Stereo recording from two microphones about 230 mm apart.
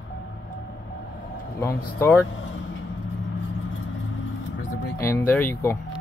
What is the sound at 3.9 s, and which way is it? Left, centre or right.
Vehicle, left.